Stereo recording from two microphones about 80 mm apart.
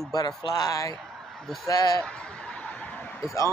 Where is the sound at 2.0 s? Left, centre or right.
Centre.